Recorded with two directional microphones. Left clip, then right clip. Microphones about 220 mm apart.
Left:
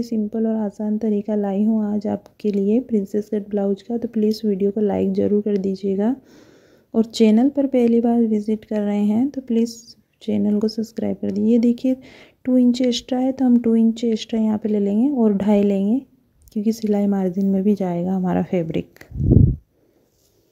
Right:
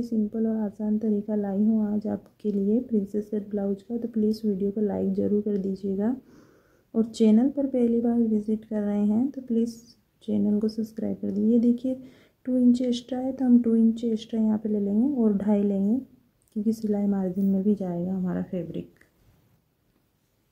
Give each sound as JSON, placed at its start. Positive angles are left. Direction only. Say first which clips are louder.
{"t": 0.0, "sound": "speech", "louder": "left 5 dB", "side_deg": 30}